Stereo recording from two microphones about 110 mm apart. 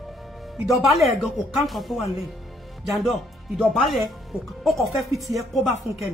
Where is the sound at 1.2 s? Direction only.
Centre (ahead or behind).